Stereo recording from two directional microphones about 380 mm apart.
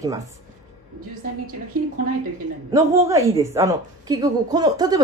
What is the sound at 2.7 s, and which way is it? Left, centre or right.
A woman's voice, centre.